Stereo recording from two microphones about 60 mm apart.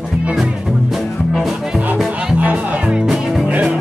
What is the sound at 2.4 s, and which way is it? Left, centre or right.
Music, right.